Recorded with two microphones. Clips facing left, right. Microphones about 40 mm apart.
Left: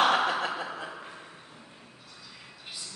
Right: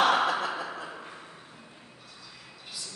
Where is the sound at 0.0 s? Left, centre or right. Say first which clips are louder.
Even; centre.